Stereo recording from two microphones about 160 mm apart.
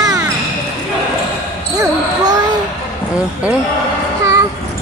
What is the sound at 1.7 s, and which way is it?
Basketball bounce, 25° right (ahead or behind).